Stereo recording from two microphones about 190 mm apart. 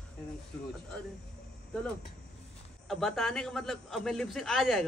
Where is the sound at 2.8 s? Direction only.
Centre (ahead or behind).